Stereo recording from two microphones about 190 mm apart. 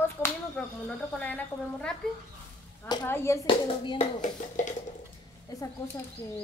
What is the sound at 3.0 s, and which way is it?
Speech, 10° left (ahead or behind).